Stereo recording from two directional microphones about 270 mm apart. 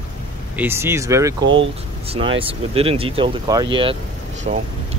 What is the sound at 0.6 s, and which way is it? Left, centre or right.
Speech, centre.